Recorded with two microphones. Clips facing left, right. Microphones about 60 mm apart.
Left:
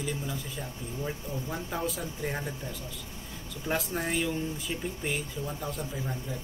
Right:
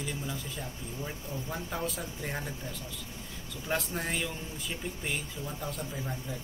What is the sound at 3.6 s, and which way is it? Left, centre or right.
Speech, centre.